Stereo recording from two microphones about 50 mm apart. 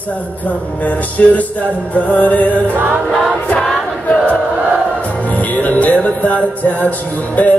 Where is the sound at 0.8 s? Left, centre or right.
Left.